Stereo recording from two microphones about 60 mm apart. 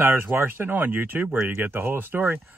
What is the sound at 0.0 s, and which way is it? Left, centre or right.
Speech, right.